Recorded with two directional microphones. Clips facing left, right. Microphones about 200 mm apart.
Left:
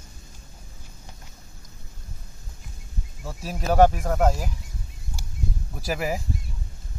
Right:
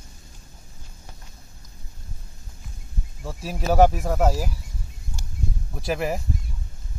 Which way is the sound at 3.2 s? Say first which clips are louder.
Right 2 dB; centre (ahead or behind).